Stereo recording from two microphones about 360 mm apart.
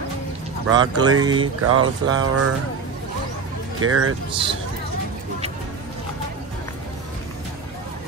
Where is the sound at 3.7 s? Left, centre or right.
Right.